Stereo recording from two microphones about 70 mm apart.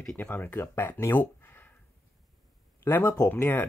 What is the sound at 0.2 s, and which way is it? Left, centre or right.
Speech, left.